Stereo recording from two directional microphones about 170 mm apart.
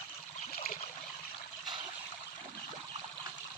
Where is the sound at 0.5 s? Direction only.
55° left (ahead or behind).